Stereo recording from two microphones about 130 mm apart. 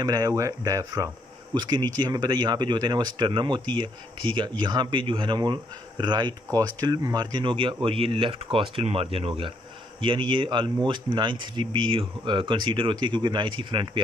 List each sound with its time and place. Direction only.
0.0 s speech: 30° right (ahead or behind)